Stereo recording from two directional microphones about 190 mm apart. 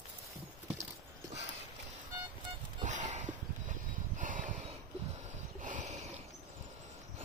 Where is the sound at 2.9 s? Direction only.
40° right (ahead or behind).